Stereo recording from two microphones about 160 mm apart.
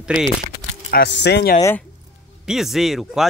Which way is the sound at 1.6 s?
15° left (ahead or behind).